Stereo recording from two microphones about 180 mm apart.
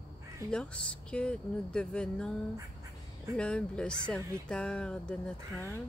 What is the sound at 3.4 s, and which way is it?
Speech, 5° left (ahead or behind).